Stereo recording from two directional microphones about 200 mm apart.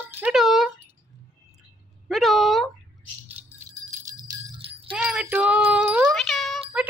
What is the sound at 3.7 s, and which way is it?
Jingle bell, 15° right (ahead or behind).